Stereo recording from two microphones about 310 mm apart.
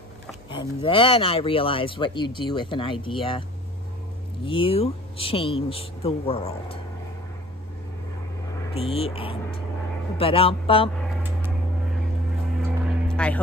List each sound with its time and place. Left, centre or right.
0.5 s speech: centre
4.5 s speech: centre
8.7 s speech: centre
12.8 s a sound: centre